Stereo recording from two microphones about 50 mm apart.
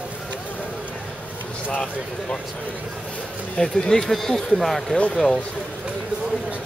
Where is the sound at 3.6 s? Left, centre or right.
Centre.